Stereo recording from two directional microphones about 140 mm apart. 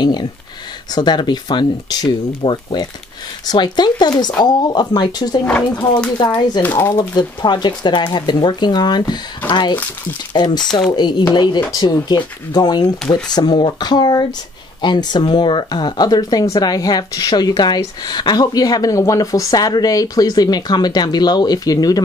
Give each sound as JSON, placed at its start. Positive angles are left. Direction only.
{"t": 0.0, "sound": "speech", "side_deg": 30}
{"t": 5.4, "sound": "speech", "side_deg": 10}
{"t": 6.1, "sound": "speech", "side_deg": 30}
{"t": 6.6, "sound": "speech", "side_deg": 10}
{"t": 6.9, "sound": "speech", "side_deg": 30}
{"t": 10.6, "sound": "speech", "side_deg": 5}
{"t": 10.9, "sound": "speech", "side_deg": 30}